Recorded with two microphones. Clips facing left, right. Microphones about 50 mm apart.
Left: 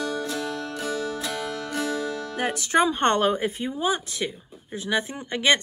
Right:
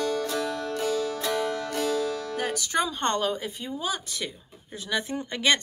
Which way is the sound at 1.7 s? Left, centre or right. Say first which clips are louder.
Left 2 dB; left.